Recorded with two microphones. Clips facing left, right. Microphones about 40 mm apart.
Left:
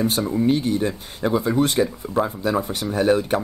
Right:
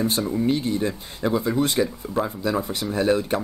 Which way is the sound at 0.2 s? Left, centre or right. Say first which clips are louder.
Left 3 dB; centre.